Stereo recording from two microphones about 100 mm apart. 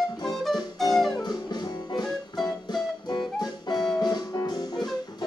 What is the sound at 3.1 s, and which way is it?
Music, 45° left (ahead or behind).